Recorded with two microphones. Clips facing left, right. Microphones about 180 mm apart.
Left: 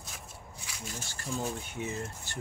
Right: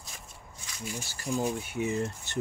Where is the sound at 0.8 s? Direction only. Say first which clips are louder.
Right 5 dB; 10° right (ahead or behind).